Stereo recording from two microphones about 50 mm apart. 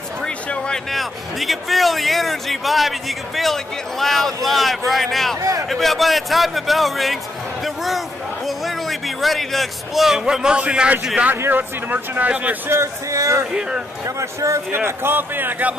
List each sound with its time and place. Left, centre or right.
0.9 s a man's voice: centre
7.6 s a sound: centre
10.2 s a man's voice: centre
11.5 s speech: right
12.6 s speech: right
13.5 s a man's voice: centre
14.0 s speech: right
14.9 s a man's voice: right